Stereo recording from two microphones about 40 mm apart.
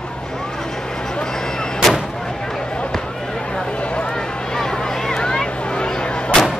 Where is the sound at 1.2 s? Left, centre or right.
Centre.